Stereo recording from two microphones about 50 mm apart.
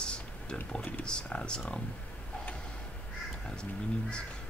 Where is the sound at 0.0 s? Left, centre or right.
Centre.